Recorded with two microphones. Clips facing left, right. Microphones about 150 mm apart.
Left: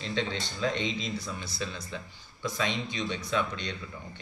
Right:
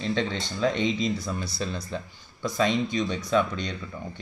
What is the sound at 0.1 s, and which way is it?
Speech, 45° right (ahead or behind).